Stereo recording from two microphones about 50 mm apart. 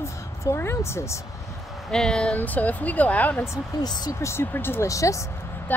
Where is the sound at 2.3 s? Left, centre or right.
Left.